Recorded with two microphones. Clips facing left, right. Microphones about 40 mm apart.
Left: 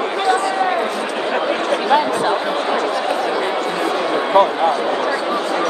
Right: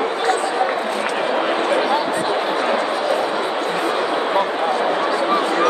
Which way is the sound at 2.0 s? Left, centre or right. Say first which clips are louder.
Left 3 dB; left.